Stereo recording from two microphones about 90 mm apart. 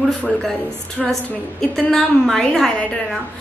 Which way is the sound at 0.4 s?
5° left (ahead or behind).